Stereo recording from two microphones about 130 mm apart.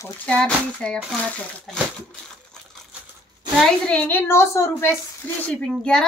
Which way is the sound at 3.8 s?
10° left (ahead or behind).